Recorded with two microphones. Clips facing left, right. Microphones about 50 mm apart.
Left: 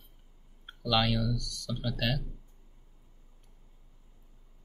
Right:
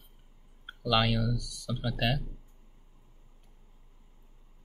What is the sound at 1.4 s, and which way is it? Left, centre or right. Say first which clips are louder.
Speech: right 1 dB; centre.